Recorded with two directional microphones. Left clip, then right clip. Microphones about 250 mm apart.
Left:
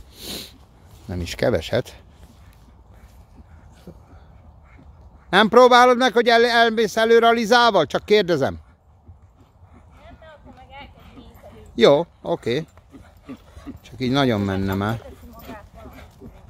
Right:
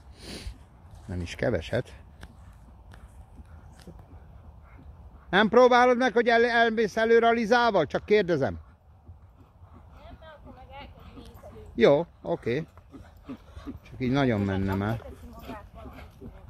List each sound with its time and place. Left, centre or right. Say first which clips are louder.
0.1 s sniff: left 9 dB; centre
1.0 s speech: left 7 dB; centre
5.3 s a man's voice: left 7 dB; centre
9.9 s a sound: left 4 dB; centre
11.7 s speech: left 6 dB; centre
13.8 s speech: left 6 dB; centre
14.6 s a sound: left 6 dB; centre